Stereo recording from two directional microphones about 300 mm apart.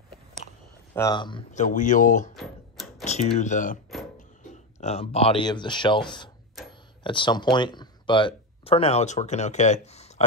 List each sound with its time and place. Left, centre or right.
0.9 s speech: centre
2.3 s a sound: centre
3.1 s speech: left
4.7 s speech: left